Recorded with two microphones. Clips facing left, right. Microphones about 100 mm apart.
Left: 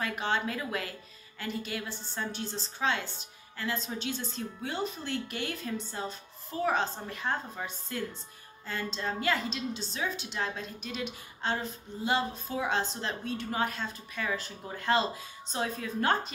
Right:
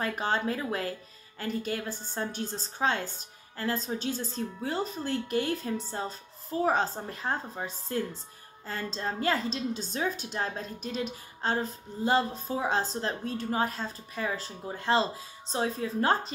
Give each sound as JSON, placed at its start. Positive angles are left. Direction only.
{"t": 0.0, "sound": "a woman's voice", "side_deg": -40}